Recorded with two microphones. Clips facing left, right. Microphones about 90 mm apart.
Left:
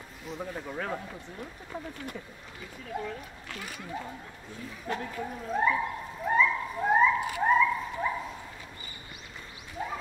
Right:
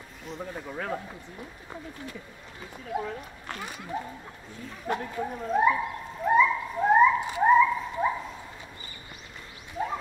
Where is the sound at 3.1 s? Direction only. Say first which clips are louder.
Right 3 dB; 40° right (ahead or behind).